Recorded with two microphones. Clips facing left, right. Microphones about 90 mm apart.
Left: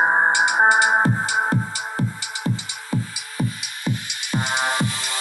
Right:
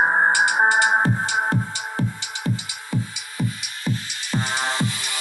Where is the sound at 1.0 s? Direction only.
30° left (ahead or behind).